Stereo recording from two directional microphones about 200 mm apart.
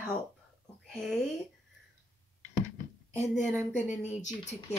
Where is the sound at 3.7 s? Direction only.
35° left (ahead or behind).